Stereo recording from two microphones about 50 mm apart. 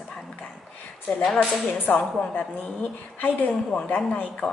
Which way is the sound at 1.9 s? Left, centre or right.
Left.